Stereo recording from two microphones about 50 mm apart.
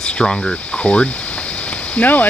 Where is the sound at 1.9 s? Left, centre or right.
Left.